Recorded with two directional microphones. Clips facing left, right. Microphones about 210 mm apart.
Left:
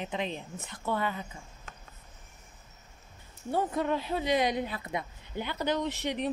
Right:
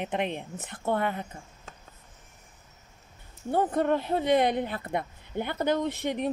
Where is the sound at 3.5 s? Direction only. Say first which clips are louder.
Right 4 dB; 50° right (ahead or behind).